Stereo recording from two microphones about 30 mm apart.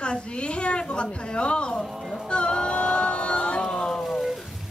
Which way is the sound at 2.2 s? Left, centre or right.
Left.